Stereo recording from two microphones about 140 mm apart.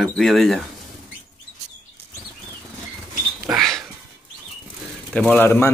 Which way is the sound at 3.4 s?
Centre (ahead or behind).